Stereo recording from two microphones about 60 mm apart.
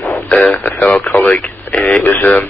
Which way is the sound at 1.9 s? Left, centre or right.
Left.